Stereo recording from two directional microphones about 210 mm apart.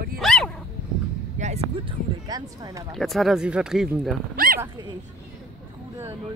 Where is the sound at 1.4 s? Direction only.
30° right (ahead or behind).